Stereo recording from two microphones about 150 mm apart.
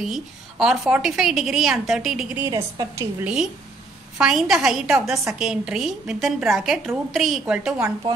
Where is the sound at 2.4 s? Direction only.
20° right (ahead or behind).